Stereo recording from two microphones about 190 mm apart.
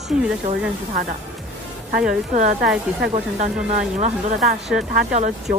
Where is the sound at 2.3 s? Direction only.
40° right (ahead or behind).